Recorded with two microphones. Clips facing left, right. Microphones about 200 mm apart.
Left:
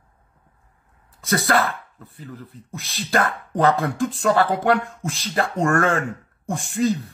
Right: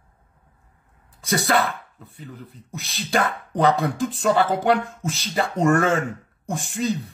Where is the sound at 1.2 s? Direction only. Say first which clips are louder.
Left 1 dB; centre (ahead or behind).